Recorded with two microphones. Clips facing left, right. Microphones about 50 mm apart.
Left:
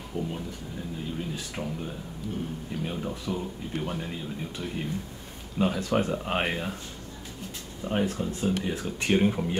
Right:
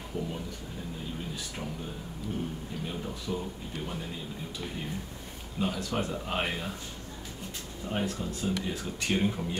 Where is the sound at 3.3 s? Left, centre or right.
Left.